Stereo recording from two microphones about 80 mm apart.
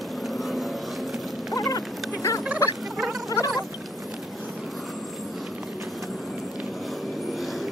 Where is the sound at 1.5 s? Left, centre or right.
Left.